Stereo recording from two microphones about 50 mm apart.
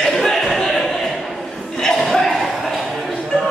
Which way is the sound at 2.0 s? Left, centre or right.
Centre.